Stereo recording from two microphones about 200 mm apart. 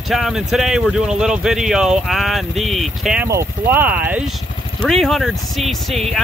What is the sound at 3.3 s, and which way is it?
Speech, 10° right (ahead or behind).